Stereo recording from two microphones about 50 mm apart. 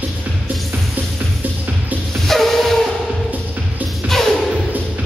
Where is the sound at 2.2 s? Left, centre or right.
Centre.